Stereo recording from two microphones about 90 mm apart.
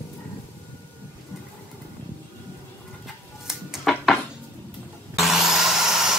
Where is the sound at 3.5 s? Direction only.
5° right (ahead or behind).